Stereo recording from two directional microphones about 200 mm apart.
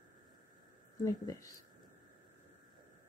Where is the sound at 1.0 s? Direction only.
15° left (ahead or behind).